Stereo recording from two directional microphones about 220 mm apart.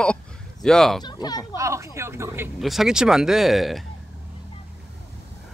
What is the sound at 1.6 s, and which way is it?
A man's voice, 15° right (ahead or behind).